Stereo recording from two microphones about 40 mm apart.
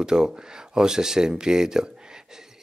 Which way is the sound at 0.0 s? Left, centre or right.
Centre.